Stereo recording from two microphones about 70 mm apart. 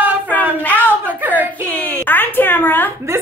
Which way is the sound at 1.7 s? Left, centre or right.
Centre.